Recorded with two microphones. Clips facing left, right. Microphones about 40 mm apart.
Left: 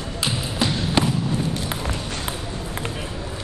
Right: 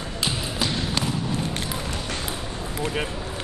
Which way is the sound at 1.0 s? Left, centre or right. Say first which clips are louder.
Left 8 dB; left.